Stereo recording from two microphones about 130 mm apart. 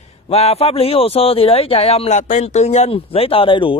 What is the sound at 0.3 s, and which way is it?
Speech, 50° left (ahead or behind).